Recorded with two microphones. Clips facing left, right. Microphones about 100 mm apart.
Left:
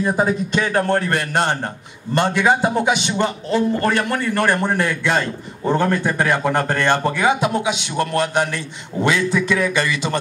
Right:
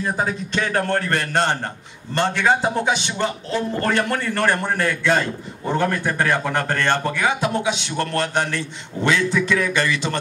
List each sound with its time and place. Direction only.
0.0 s a man's voice: 15° left (ahead or behind)